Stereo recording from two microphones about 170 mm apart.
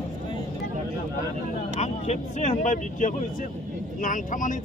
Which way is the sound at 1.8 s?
40° left (ahead or behind).